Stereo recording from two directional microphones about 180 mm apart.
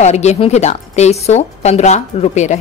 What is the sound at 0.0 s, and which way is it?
A woman's voice, 40° left (ahead or behind).